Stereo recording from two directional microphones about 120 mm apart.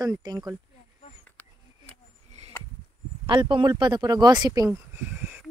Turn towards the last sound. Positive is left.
turn(degrees=-30)  # may be behind; listen again after turning